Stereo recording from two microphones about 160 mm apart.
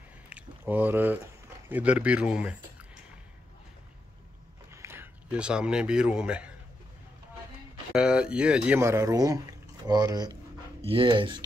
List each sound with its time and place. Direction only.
0.3 s speech: 10° right (ahead or behind)
4.8 s speech: 15° right (ahead or behind)
7.9 s speech: 5° right (ahead or behind)
8.8 s speech: 20° right (ahead or behind)